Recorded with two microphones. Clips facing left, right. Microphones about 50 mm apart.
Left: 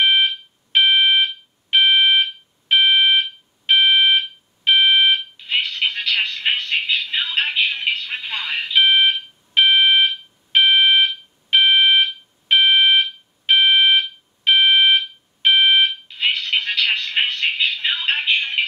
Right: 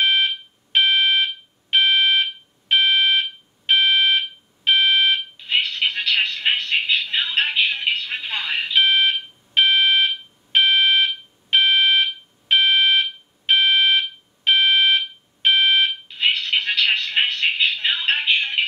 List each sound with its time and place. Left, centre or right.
0.0 s fire alarm: left
0.8 s alarm: left
5.1 s smoke detector: centre
7.3 s music: centre
8.7 s alarm: centre
16.1 s telephone: centre